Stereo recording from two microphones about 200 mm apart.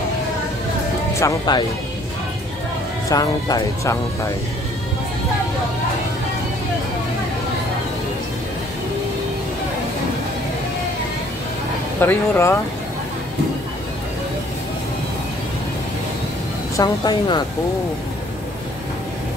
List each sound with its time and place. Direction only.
1.2 s speech: 20° left (ahead or behind)
3.1 s speech: 15° left (ahead or behind)
12.0 s speech: 10° left (ahead or behind)
16.7 s speech: 20° left (ahead or behind)